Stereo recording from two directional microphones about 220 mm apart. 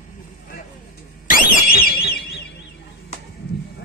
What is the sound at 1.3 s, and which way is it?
Alarm, 40° left (ahead or behind).